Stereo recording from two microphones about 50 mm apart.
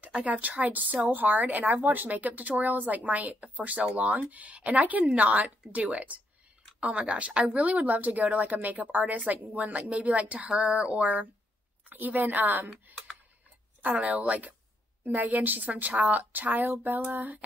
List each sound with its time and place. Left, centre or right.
0.2 s speech: right
13.9 s speech: right